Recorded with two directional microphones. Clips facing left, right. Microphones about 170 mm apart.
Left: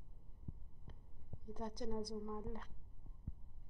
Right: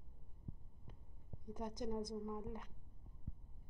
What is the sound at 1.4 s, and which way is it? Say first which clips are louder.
A woman's voice: right 1 dB; 15° right (ahead or behind).